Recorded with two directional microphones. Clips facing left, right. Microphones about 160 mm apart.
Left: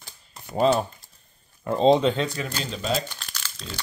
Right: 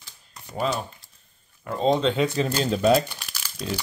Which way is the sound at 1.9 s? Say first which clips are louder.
Left 2 dB; 5° left (ahead or behind).